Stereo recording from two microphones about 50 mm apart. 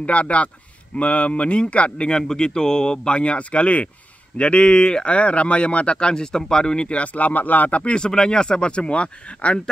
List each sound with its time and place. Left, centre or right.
0.0 s speech: left